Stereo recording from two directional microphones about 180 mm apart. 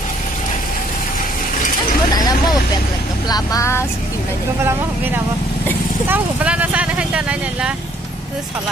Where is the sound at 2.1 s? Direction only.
20° left (ahead or behind).